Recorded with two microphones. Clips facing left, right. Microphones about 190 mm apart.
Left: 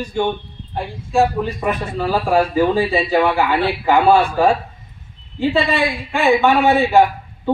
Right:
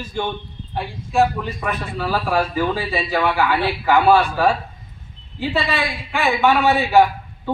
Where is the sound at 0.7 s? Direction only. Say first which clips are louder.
Left 3 dB; centre (ahead or behind).